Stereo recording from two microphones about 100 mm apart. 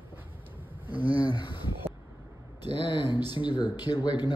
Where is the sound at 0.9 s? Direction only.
45° left (ahead or behind).